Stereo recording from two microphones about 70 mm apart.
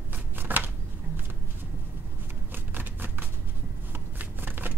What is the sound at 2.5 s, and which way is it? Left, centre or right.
Shuffling cards, right.